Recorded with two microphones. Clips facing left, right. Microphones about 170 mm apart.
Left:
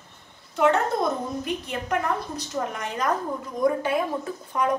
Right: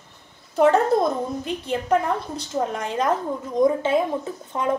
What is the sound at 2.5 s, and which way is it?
A woman's voice, 30° right (ahead or behind).